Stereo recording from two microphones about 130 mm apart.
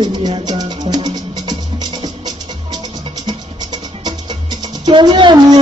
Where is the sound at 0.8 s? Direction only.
30° right (ahead or behind).